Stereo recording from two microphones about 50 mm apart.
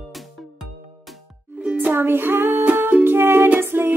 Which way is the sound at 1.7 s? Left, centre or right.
Right.